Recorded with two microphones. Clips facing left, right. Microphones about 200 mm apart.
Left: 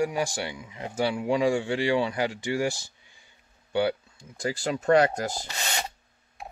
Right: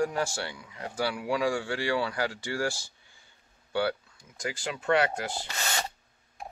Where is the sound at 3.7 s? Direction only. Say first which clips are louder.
Left 3 dB; 20° left (ahead or behind).